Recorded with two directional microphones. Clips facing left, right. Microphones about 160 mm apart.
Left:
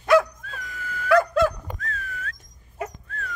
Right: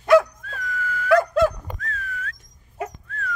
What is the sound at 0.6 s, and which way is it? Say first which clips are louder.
Dog: right 6 dB; 25° left (ahead or behind).